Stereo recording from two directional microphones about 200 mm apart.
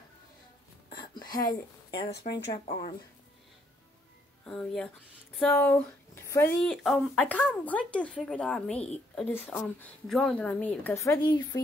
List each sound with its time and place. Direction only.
0.9 s a sound: 20° left (ahead or behind)
1.9 s speech: 55° left (ahead or behind)
4.5 s speech: 5° left (ahead or behind); by 11.6 s 20° left (ahead or behind)